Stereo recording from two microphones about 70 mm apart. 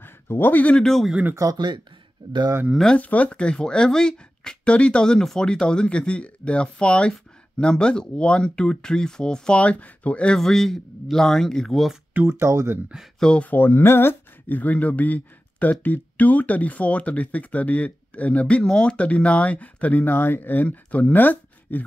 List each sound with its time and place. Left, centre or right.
0.0 s speech: left
0.8 s speech: centre
1.3 s speech: right
2.9 s speech: left; by 12.0 s centre
12.3 s speech: right
13.2 s speech: centre
13.5 s speech: left